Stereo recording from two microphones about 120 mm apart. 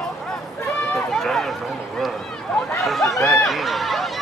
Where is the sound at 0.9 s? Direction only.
Centre (ahead or behind).